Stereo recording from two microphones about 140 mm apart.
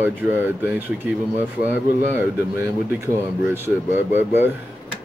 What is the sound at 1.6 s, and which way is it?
Speech, 15° right (ahead or behind).